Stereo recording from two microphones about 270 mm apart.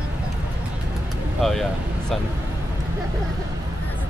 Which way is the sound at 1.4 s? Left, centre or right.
Centre.